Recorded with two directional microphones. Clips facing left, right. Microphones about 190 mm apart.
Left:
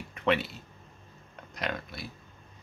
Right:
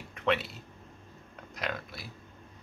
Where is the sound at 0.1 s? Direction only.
Centre (ahead or behind).